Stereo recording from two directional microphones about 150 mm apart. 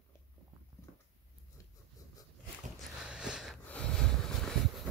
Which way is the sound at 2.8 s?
5° right (ahead or behind).